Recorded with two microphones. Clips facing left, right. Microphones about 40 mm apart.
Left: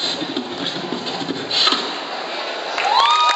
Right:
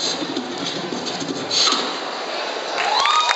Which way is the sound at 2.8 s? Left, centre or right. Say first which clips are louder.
Left 4 dB; left.